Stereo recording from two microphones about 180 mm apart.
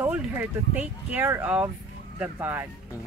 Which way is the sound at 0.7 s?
10° right (ahead or behind).